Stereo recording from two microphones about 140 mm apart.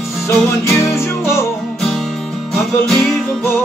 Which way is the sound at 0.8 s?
20° left (ahead or behind).